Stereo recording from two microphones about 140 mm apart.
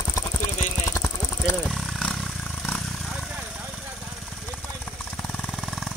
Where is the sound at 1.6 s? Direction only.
Centre (ahead or behind).